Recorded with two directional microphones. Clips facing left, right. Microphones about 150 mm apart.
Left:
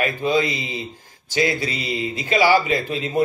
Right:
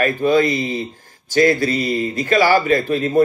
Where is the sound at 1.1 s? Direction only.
45° right (ahead or behind).